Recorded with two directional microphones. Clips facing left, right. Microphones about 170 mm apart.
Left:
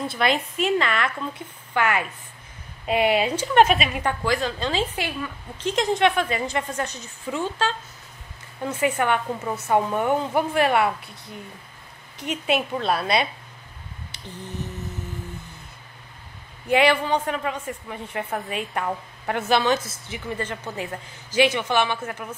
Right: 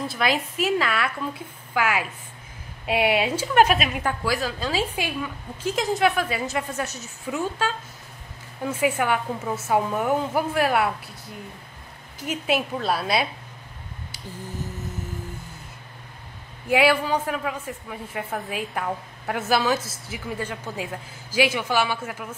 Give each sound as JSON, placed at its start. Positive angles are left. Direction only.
{"t": 0.0, "sound": "a woman's voice", "side_deg": 0}
{"t": 12.3, "sound": "a woman's voice", "side_deg": 0}
{"t": 16.6, "sound": "a woman's voice", "side_deg": -5}